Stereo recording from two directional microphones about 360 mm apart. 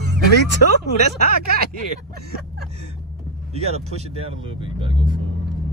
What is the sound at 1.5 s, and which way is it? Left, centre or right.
Speech, right.